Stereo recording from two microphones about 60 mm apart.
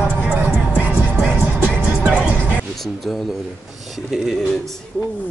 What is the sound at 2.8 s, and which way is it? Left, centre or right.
Speech, centre.